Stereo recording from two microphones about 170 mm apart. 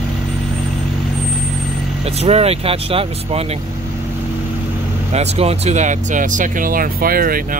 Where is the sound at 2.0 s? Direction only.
35° right (ahead or behind).